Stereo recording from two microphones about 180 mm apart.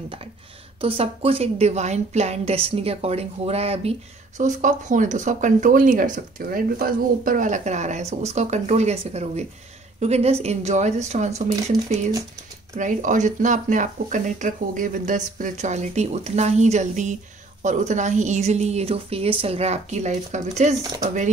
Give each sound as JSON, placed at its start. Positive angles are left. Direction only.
{"t": 0.7, "sound": "speech", "side_deg": -30}
{"t": 12.7, "sound": "speech", "side_deg": -45}